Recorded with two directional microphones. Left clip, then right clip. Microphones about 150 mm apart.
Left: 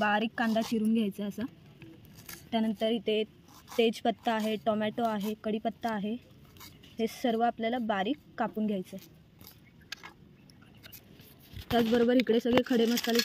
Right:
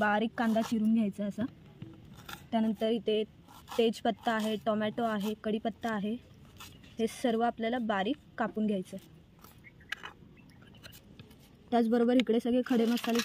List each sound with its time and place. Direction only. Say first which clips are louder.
0.0 s a woman's voice: left 1 dB; 5° right (ahead or behind)
2.5 s a woman's voice: left 1 dB; centre (ahead or behind)
11.9 s speech: left 3 dB; 15° right (ahead or behind)